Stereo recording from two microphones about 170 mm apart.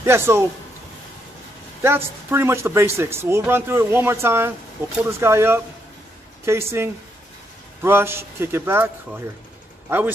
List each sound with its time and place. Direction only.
0.0 s speech: 15° right (ahead or behind)
1.8 s speech: 15° right (ahead or behind)